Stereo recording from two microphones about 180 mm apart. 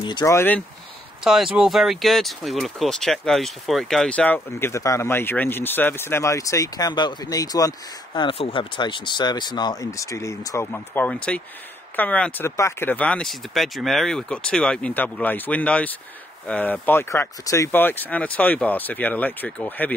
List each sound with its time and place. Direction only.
0.0 s speech: 20° left (ahead or behind)
1.2 s speech: 5° right (ahead or behind)